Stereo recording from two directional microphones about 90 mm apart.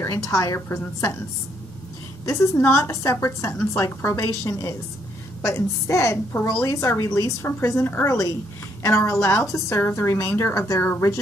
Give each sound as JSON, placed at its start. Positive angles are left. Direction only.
{"t": 0.0, "sound": "a woman's voice", "side_deg": 35}
{"t": 2.2, "sound": "a woman's voice", "side_deg": 30}